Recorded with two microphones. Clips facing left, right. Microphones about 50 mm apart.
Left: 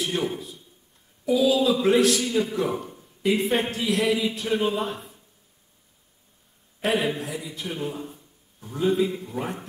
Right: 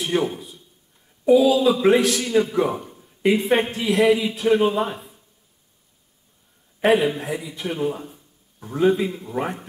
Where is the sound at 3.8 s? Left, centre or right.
Centre.